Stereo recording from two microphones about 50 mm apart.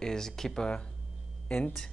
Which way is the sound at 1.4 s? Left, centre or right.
Left.